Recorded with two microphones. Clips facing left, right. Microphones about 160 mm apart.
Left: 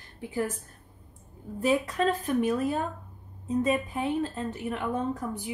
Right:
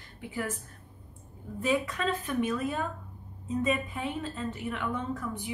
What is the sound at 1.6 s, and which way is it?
A woman's voice, 35° left (ahead or behind).